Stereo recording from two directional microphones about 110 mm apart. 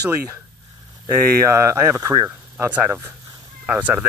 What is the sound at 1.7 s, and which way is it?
Speech, 25° right (ahead or behind).